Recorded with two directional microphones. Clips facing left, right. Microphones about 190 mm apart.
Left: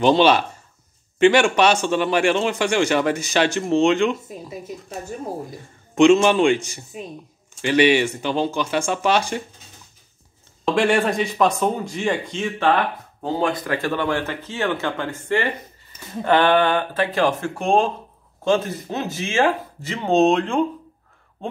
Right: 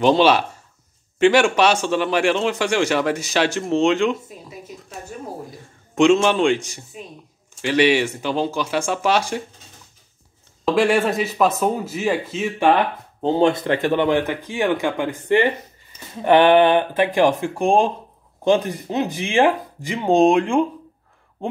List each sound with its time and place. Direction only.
0.0 s a man's voice: centre (ahead or behind)
5.9 s a man's voice: centre (ahead or behind)
10.6 s a man's voice: centre (ahead or behind)
13.2 s speech: 25° right (ahead or behind)